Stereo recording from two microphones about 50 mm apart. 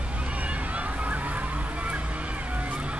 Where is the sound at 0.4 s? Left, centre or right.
Right.